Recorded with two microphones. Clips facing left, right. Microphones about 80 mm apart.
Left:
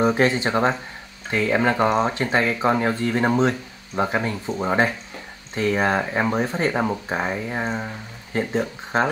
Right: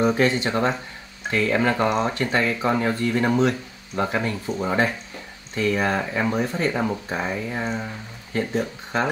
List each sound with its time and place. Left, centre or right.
0.0 s speech: left
4.0 s speech: centre